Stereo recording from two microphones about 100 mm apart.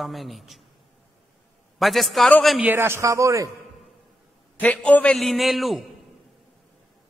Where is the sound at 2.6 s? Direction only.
25° right (ahead or behind).